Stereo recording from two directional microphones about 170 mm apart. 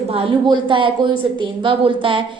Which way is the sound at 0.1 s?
30° right (ahead or behind).